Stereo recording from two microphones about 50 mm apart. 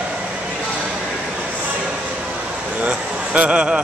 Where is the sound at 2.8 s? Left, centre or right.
Right.